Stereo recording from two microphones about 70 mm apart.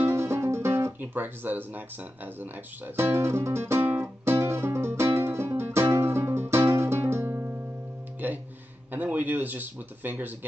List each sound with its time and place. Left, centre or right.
0.0 s music: right
3.0 s music: right
8.2 s music: right
8.9 s speech: right